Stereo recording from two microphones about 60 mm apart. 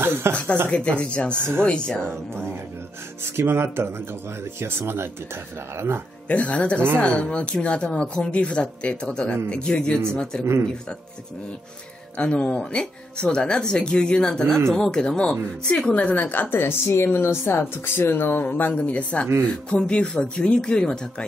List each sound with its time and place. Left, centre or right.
0.0 s speech: right
0.7 s speech: centre
1.3 s speech: right
1.6 s speech: centre
3.3 s speech: right
6.2 s speech: left
12.2 s speech: centre
15.9 s speech: left